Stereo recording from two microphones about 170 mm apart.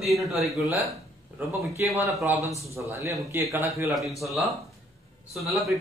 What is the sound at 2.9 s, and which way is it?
Speech, 20° right (ahead or behind).